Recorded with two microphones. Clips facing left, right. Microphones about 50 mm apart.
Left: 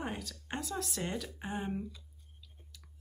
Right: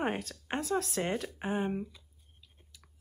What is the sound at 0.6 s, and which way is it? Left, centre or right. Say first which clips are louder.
Speech: right 8 dB; right.